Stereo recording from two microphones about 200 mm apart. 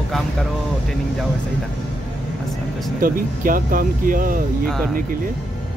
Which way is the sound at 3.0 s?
45° right (ahead or behind).